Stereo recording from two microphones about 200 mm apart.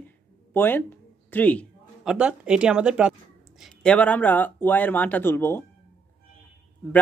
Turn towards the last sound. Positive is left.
turn(degrees=10)  # may be behind; listen again after turning